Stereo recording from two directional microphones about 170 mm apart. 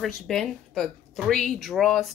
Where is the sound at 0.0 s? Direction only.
Centre (ahead or behind).